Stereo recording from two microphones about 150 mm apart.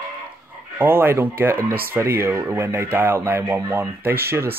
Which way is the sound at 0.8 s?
15° right (ahead or behind).